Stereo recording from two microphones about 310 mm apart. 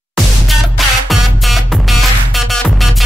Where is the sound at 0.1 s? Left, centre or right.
Centre.